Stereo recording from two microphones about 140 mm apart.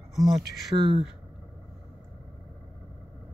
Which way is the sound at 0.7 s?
35° right (ahead or behind).